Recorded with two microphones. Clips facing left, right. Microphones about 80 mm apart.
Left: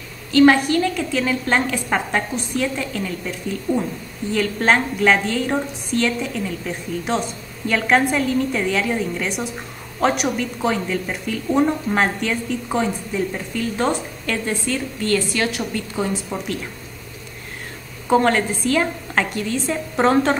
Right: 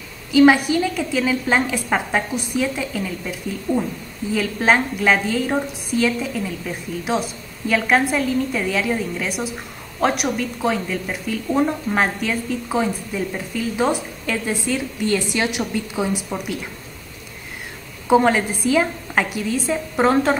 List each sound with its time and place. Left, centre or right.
0.3 s a woman's voice: centre
18.0 s a woman's voice: centre